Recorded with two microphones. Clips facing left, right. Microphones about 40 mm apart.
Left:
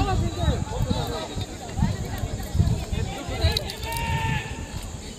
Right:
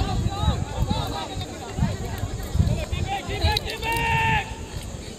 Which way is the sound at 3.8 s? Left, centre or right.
Right.